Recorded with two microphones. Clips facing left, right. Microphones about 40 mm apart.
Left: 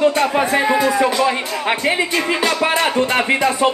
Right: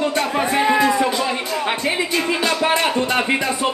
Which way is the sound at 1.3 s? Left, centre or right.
Centre.